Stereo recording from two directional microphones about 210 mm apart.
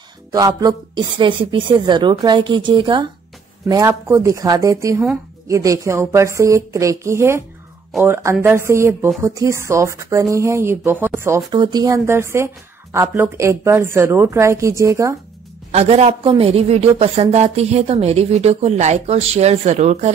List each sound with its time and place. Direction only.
0.3 s a woman's voice: 15° right (ahead or behind)
15.7 s a woman's voice: 30° right (ahead or behind)